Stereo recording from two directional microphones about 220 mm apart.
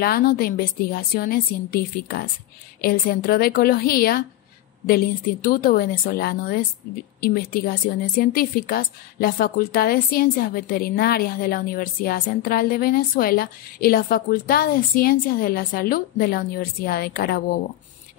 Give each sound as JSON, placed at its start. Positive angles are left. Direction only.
{"t": 0.0, "sound": "a woman's voice", "side_deg": 40}